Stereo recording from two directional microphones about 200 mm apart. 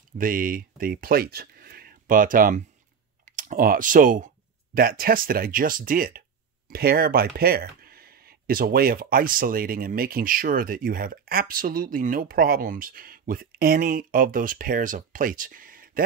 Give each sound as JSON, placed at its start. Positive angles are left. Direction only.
{"t": 0.2, "sound": "speech", "side_deg": -45}